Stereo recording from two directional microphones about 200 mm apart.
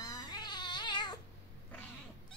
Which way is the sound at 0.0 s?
20° left (ahead or behind).